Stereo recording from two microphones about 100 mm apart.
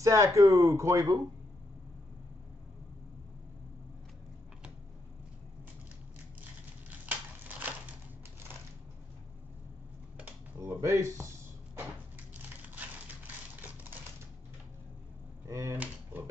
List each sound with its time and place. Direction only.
0.0 s speech: 30° right (ahead or behind)
7.1 s a sound: 15° right (ahead or behind)
10.6 s speech: 30° right (ahead or behind)
12.4 s typewriter: 15° right (ahead or behind)
15.4 s speech: 30° right (ahead or behind)
15.8 s a sound: 15° right (ahead or behind)